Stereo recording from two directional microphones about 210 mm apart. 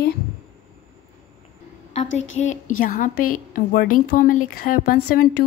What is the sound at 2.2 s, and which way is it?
A woman's voice, 35° left (ahead or behind).